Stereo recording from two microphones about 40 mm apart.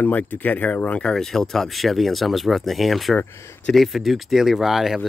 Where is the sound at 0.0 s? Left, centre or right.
Left.